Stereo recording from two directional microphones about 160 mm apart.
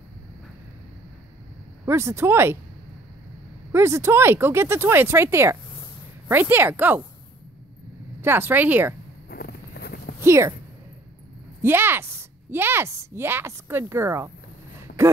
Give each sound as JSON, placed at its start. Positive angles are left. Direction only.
{"t": 1.9, "sound": "speech", "side_deg": -15}
{"t": 3.7, "sound": "speech", "side_deg": -15}
{"t": 8.2, "sound": "speech", "side_deg": -15}
{"t": 9.3, "sound": "a sound", "side_deg": 80}
{"t": 10.2, "sound": "speech", "side_deg": -20}
{"t": 11.6, "sound": "speech", "side_deg": -15}